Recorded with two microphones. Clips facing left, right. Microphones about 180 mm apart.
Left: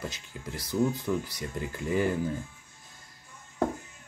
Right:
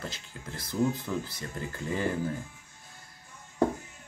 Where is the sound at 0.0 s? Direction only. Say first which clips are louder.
Left 2 dB; 15° left (ahead or behind).